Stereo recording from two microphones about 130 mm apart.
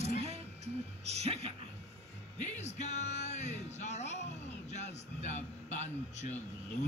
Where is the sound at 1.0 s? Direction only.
55° right (ahead or behind).